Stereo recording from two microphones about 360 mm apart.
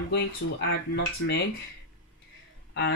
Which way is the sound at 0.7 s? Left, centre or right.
Left.